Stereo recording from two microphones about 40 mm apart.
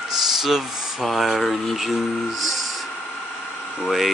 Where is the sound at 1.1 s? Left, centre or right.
Centre.